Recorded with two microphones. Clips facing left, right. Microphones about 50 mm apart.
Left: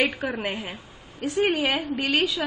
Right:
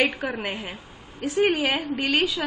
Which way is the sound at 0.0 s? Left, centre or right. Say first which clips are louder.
Right 1 dB; centre.